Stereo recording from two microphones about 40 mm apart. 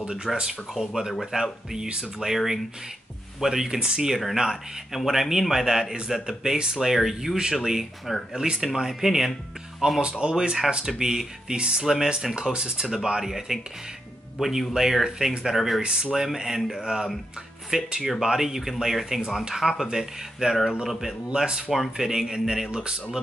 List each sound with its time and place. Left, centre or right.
0.3 s speech: centre
0.7 s a man's voice: centre
10.2 s speech: right
10.9 s a man's voice: centre
13.2 s a man's voice: centre
14.7 s a man's voice: centre
15.8 s speech: right
16.1 s a man's voice: centre